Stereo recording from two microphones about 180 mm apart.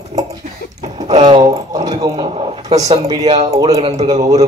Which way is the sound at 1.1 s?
25° right (ahead or behind).